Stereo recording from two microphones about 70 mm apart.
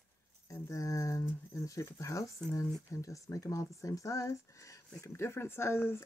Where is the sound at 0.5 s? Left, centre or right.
Left.